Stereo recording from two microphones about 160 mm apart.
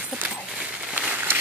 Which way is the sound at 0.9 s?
10° right (ahead or behind).